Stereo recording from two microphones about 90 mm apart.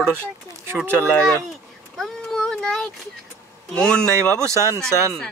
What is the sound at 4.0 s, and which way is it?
Speech, 30° right (ahead or behind).